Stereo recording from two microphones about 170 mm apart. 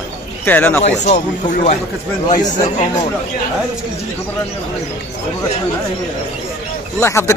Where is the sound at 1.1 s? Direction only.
45° left (ahead or behind).